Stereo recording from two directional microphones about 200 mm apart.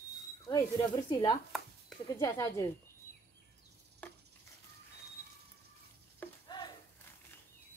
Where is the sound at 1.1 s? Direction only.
20° left (ahead or behind).